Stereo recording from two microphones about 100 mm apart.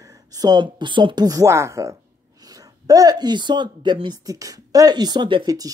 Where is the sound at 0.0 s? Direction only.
40° right (ahead or behind).